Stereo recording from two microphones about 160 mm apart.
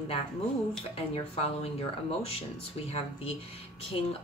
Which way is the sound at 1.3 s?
40° left (ahead or behind).